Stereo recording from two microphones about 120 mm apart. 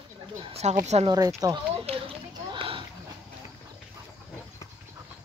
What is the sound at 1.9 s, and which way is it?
Children playing, 50° right (ahead or behind).